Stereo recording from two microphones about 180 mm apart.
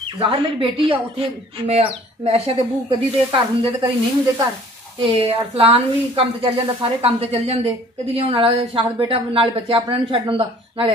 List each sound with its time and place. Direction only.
0.2 s a woman's voice: 30° right (ahead or behind)
5.0 s a woman's voice: 35° right (ahead or behind)